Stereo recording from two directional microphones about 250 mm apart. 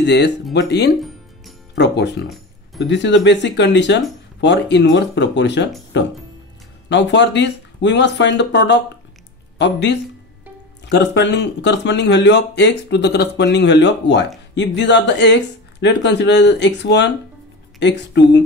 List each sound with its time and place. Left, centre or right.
0.0 s speech: left
2.2 s music: centre
2.9 s speech: left